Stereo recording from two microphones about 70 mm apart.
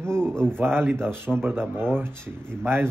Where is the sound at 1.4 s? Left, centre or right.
Right.